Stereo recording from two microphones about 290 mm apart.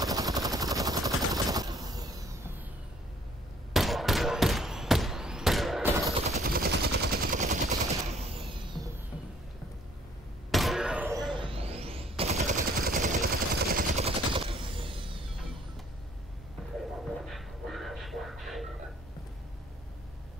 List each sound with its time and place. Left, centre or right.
0.0 s gunshot: centre
3.7 s a sound: centre
6.2 s gunshot: right
10.5 s slam: centre
11.3 s machine gun: centre
17.3 s music: centre